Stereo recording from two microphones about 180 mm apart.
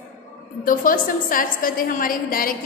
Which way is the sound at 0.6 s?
50° left (ahead or behind).